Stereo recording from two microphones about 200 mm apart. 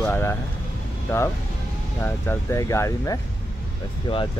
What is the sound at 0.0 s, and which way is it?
Speech, 10° left (ahead or behind).